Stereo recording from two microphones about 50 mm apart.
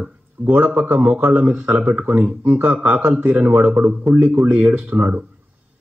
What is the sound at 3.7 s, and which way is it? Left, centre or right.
Speech, right.